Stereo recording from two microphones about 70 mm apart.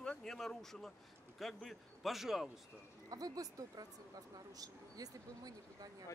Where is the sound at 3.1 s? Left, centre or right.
Right.